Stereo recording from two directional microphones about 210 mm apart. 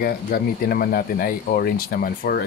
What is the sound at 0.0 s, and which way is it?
Speech, 45° left (ahead or behind).